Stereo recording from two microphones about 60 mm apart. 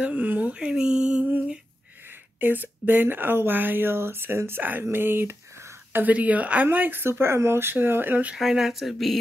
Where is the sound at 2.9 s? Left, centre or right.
Right.